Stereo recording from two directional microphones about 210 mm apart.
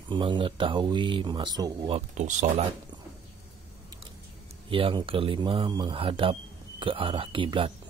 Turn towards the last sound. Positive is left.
turn(degrees=-25)  # may be behind; listen again after turning